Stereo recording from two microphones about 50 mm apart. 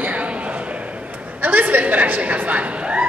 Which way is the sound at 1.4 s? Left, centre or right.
Right.